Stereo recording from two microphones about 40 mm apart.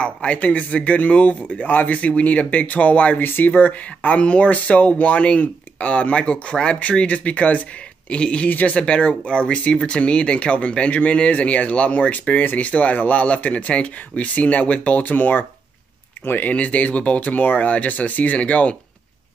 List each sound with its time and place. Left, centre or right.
0.0 s speech: left
2.0 s speech: left
8.5 s speech: left
16.4 s speech: left